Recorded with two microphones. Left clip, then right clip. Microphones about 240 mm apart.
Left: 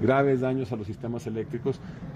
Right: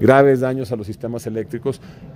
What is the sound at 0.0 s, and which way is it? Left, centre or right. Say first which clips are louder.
Speech: right 10 dB; right.